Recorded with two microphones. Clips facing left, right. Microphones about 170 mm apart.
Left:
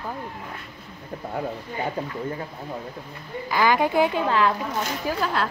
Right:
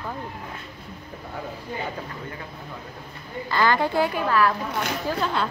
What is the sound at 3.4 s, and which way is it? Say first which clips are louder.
Speech: left 1 dB; 15° left (ahead or behind).